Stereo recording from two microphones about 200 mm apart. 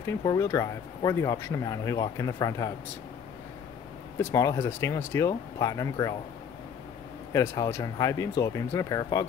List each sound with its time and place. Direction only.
0.0 s speech: 15° left (ahead or behind)
4.2 s speech: 15° left (ahead or behind)
7.3 s speech: 15° left (ahead or behind)